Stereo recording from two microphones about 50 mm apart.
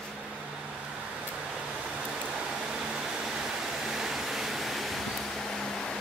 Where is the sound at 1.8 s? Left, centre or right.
Centre.